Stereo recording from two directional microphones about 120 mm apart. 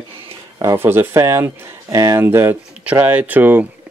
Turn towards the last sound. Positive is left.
turn(degrees=-15)  # may be behind; listen again after turning